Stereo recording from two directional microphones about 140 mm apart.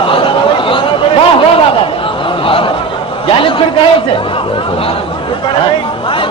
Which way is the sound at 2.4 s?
40° left (ahead or behind).